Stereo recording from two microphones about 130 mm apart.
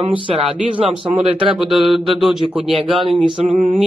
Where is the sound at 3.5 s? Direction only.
55° right (ahead or behind).